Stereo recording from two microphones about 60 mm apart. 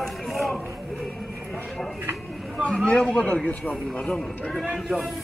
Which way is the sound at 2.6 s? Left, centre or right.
Centre.